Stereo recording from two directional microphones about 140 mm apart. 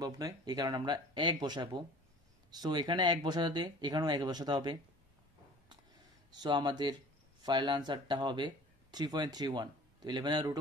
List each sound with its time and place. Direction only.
0.0 s speech: 25° right (ahead or behind)
6.3 s speech: 30° right (ahead or behind)